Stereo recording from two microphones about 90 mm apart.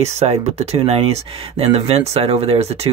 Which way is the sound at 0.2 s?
90° right.